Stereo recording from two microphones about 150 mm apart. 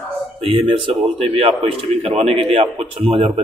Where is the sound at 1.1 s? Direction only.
40° right (ahead or behind).